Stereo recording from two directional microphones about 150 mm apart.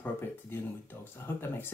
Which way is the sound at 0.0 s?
15° left (ahead or behind).